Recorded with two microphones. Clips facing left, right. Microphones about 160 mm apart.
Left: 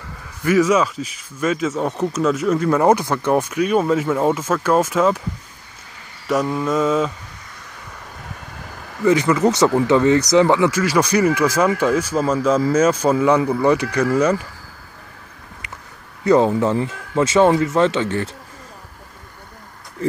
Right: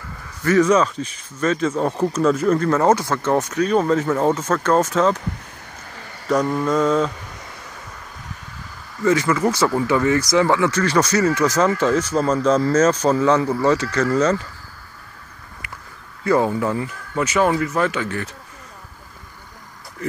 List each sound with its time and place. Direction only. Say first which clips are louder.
0.4 s speech: even; 10° left (ahead or behind)
2.7 s speech: left 1 dB; 15° left (ahead or behind)
6.2 s speech: even; 5° left (ahead or behind)
9.0 s speech: left 2 dB; 20° left (ahead or behind)
16.3 s speech: left 3 dB; 20° left (ahead or behind)